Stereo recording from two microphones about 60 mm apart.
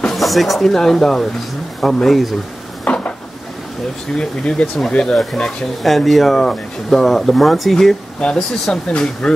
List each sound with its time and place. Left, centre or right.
0.0 s speech: centre
2.8 s dishes: left
4.2 s speech: centre
8.2 s speech: centre